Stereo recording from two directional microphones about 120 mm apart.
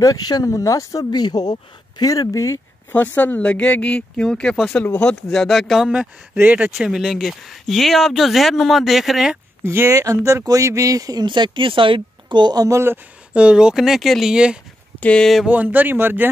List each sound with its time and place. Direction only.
0.0 s speech: 30° left (ahead or behind)
2.9 s speech: 15° left (ahead or behind); by 9.4 s 5° right (ahead or behind)
9.6 s speech: 20° right (ahead or behind)
15.0 s speech: 10° left (ahead or behind)
15.4 s speech: 15° right (ahead or behind)